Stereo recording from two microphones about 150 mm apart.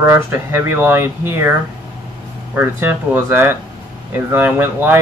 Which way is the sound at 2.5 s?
15° right (ahead or behind).